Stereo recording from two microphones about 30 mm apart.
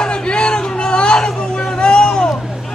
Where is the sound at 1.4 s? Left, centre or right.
Left.